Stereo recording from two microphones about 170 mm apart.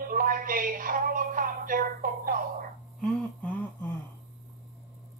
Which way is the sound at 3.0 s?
5° left (ahead or behind).